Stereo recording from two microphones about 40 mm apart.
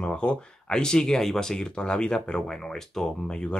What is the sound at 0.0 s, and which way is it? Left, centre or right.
Speech, left.